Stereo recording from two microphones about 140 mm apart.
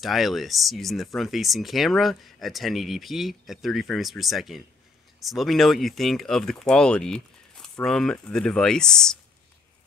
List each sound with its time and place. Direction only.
0.0 s speech: centre (ahead or behind)